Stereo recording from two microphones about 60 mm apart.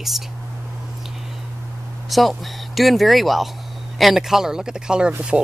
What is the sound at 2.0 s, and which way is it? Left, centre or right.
Speech, centre.